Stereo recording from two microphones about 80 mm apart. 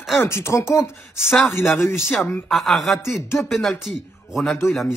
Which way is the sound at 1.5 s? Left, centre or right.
Left.